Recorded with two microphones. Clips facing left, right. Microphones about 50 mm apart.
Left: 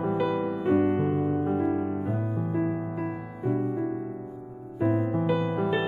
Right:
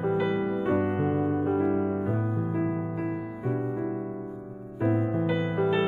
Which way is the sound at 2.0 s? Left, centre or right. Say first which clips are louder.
Right 1 dB; centre.